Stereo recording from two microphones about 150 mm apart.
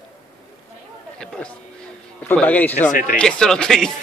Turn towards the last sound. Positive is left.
turn(degrees=5)  # may be behind; listen again after turning